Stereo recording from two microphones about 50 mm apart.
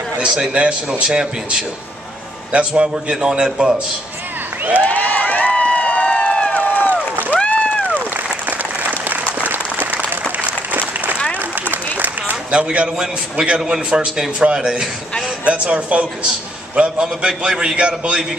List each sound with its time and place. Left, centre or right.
0.4 s a man's voice: right
4.8 s run: left
6.7 s crowd: left
7.4 s a sound: left
9.5 s applause: right
12.2 s a man's voice: right